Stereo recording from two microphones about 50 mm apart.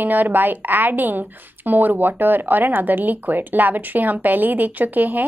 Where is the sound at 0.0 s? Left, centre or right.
Right.